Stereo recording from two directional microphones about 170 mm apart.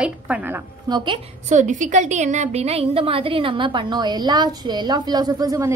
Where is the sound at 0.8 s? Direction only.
25° right (ahead or behind).